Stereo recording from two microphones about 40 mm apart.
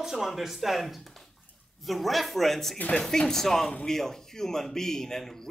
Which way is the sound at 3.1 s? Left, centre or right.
Centre.